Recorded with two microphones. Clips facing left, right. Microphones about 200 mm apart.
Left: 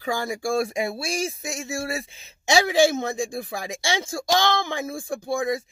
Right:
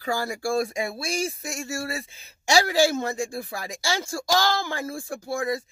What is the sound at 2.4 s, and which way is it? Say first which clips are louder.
Speech: left 2 dB; 20° left (ahead or behind).